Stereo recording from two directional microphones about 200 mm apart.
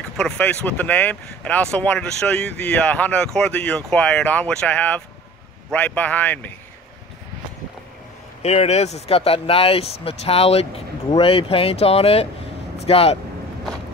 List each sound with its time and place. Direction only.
0.2 s speech: 5° left (ahead or behind)
8.4 s speech: 35° left (ahead or behind)